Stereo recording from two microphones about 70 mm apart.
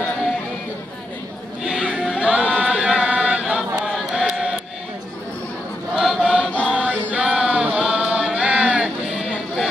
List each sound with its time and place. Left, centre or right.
1.6 s choir: centre
4.1 s chant: centre
5.9 s chant: centre
6.7 s choir: centre
7.2 s a sound: centre